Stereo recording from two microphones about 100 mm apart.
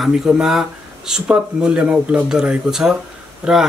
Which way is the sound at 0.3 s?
5° right (ahead or behind).